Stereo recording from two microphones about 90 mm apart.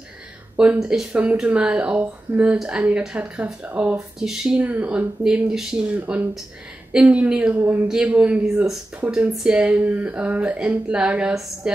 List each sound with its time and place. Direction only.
0.6 s speech: 10° right (ahead or behind)
3.9 s speech: 5° right (ahead or behind)
4.6 s speech: 15° right (ahead or behind)
7.9 s speech: 15° right (ahead or behind)
9.3 s a woman's voice: 5° right (ahead or behind)